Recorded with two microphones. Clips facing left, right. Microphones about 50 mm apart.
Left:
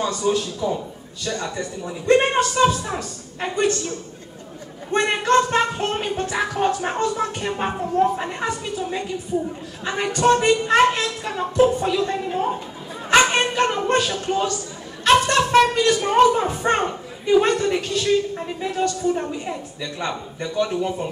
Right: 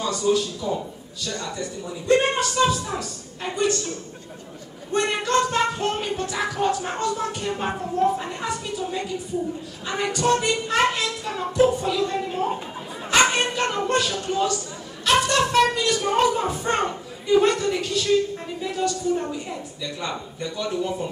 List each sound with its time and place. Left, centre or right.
0.0 s a sound: left
0.6 s a man's voice: left
4.9 s speech: left
10.1 s speech: left
13.1 s bow-wow: left
15.0 s speech: left